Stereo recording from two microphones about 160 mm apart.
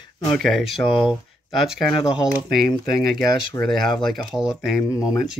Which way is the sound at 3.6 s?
Centre (ahead or behind).